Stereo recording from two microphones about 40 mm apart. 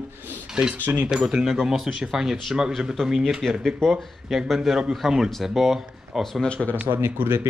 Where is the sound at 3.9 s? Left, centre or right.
Centre.